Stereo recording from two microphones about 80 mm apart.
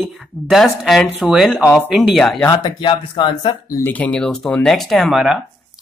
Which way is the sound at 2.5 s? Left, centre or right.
Left.